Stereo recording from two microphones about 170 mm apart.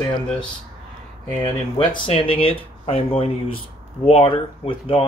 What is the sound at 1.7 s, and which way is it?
Speech, 30° left (ahead or behind).